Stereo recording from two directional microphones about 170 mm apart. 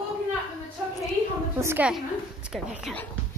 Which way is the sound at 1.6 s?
10° right (ahead or behind).